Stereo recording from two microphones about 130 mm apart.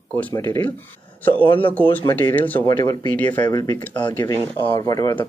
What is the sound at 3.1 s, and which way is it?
Speech, 10° left (ahead or behind).